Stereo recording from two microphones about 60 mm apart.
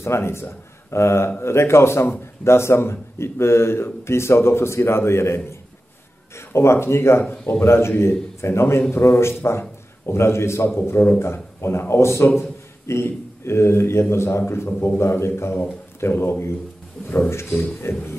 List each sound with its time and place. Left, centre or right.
0.0 s a man's voice: left
17.5 s speech: centre